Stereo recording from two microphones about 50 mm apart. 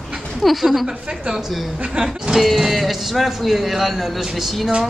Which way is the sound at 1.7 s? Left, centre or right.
Right.